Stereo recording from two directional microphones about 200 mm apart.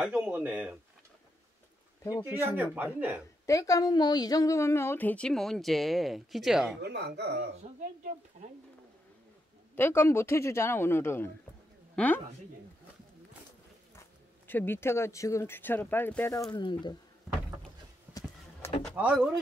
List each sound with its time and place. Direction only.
0.0 s speech: 5° right (ahead or behind)
2.4 s speech: 10° right (ahead or behind)
3.4 s a woman's voice: 15° left (ahead or behind); by 6.8 s centre (ahead or behind)
6.8 s speech: 55° right (ahead or behind)
9.8 s a woman's voice: 10° left (ahead or behind)
14.5 s a woman's voice: 10° left (ahead or behind)
18.6 s vehicle: 10° left (ahead or behind)
18.9 s speech: 5° right (ahead or behind)